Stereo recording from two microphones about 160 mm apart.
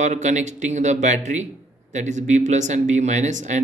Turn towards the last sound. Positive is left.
turn(degrees=-50)  # may be behind; listen again after turning